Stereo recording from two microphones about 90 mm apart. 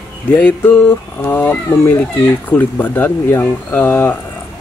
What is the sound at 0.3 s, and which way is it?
Speech, 20° left (ahead or behind).